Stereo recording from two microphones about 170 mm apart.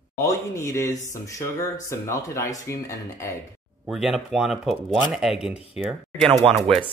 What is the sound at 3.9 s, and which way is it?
Speech, 5° right (ahead or behind).